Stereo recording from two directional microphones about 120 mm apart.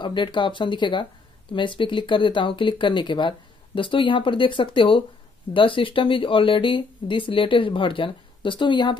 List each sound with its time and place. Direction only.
0.0 s speech: 40° left (ahead or behind)